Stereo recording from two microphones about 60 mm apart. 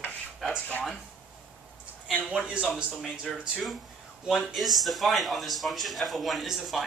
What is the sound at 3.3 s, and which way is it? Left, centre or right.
Speech, centre.